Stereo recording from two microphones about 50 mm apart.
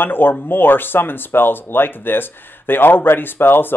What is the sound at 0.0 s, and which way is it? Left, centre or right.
Speech, left.